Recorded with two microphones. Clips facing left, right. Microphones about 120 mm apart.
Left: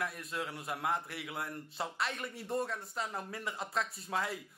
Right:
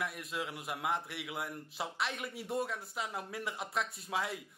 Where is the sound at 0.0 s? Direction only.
Centre (ahead or behind).